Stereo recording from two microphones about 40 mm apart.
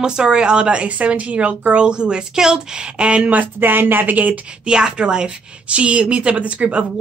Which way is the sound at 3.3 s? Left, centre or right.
Right.